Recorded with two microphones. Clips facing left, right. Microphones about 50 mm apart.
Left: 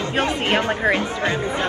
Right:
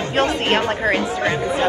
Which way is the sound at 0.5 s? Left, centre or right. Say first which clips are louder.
Right 1 dB; centre.